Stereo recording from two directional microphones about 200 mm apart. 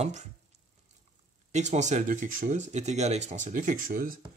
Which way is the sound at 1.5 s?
35° right (ahead or behind).